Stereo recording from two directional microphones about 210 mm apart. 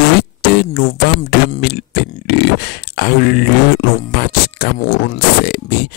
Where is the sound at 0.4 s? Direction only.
45° left (ahead or behind).